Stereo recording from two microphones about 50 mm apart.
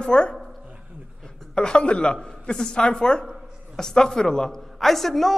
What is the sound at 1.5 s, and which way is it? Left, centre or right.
A woman's voice, centre.